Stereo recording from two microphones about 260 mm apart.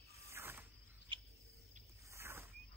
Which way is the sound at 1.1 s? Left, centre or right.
Centre.